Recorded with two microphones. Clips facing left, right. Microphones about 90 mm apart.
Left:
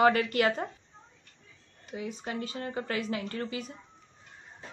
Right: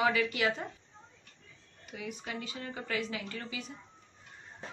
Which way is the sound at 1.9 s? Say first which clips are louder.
Left 4 dB; 30° left (ahead or behind).